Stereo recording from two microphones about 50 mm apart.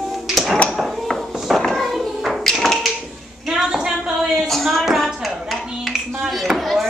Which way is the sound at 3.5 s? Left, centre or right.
Centre.